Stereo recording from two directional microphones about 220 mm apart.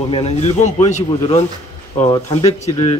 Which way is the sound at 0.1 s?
25° left (ahead or behind).